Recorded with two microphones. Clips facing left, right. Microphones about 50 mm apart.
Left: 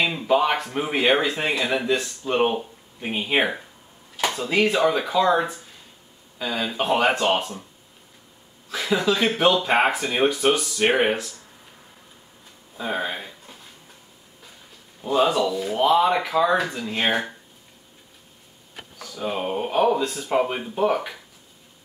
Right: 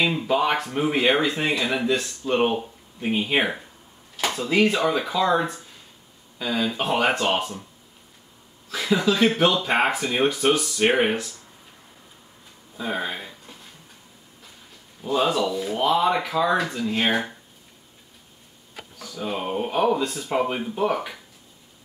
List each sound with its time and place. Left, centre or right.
0.0 s speech: centre
8.6 s speech: centre
12.7 s speech: centre
15.0 s speech: centre
18.9 s speech: centre